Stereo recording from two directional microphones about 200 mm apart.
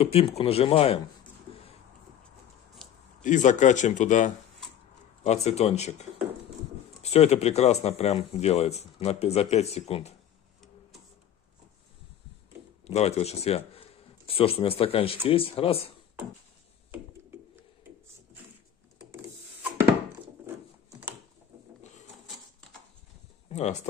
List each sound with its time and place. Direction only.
0.0 s speech: 30° left (ahead or behind)
3.3 s speech: 40° left (ahead or behind)
12.8 s speech: 30° left (ahead or behind)
22.3 s a sound: 5° left (ahead or behind)
23.5 s speech: 35° left (ahead or behind)